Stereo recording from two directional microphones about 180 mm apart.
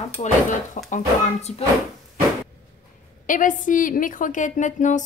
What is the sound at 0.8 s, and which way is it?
Speech, 45° left (ahead or behind).